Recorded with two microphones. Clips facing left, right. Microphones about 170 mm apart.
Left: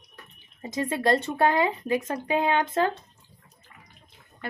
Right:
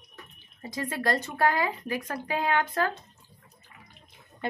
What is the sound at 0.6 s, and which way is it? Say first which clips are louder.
Speech: left 5 dB; 20° left (ahead or behind).